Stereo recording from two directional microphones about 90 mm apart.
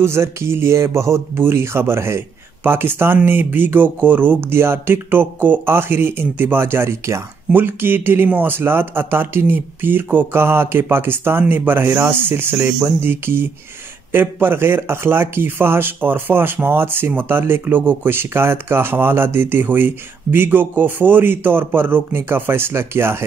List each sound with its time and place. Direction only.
0.0 s speech: 30° right (ahead or behind)